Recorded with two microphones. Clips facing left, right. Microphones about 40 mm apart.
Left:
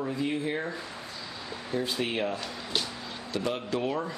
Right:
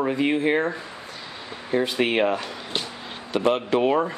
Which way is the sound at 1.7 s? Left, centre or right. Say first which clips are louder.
Right 8 dB; right.